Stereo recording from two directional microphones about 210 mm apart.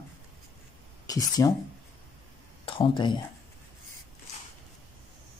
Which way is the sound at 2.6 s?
25° left (ahead or behind).